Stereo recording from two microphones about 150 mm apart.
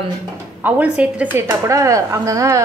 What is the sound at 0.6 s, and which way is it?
Speech, 10° right (ahead or behind).